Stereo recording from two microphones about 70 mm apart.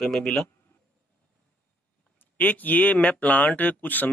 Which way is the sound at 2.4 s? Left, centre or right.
Left.